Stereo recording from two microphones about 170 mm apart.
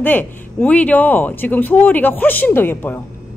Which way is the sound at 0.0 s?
10° left (ahead or behind).